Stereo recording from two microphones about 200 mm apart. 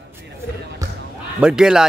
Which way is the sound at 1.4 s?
5° right (ahead or behind).